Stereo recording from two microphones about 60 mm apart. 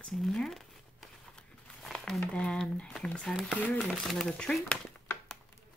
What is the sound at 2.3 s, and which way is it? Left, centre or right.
Speech, centre.